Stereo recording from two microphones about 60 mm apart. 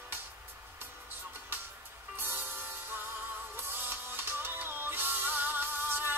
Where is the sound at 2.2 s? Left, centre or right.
Right.